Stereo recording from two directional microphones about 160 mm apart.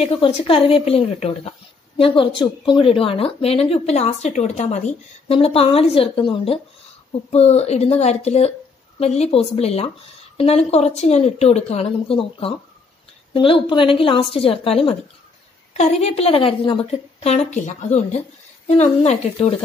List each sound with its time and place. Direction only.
0.0 s speech: 40° left (ahead or behind)